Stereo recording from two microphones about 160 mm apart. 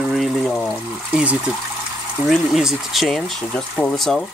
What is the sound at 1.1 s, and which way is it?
Speech, 10° right (ahead or behind).